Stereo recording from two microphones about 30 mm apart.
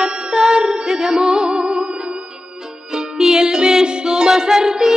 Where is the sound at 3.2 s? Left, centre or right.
Right.